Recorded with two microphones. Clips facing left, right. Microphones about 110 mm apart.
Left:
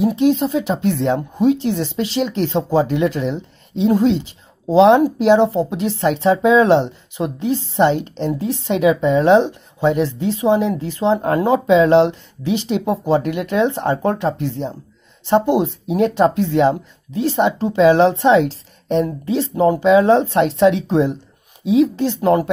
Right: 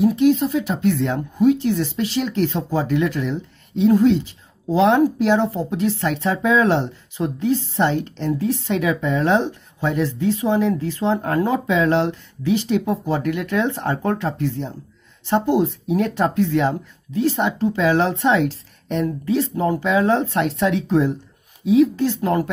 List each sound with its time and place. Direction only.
0.0 s speech: 25° left (ahead or behind)